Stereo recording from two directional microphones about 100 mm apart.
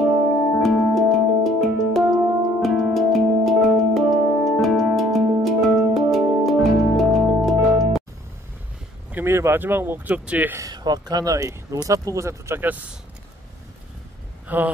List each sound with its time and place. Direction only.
0.6 s music: centre (ahead or behind)
9.1 s speech: 25° right (ahead or behind)
10.6 s speech: 45° right (ahead or behind); by 12.6 s 30° right (ahead or behind)
14.5 s speech: 15° right (ahead or behind)